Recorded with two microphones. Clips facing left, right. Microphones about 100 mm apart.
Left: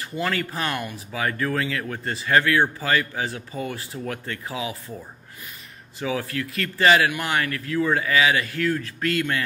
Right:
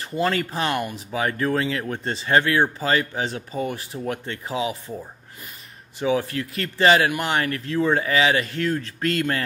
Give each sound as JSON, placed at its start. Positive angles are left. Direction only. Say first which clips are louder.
{"t": 0.0, "sound": "speech", "louder": "right 3 dB", "side_deg": -30}